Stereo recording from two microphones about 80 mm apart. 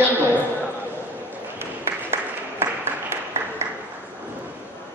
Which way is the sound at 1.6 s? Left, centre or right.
Right.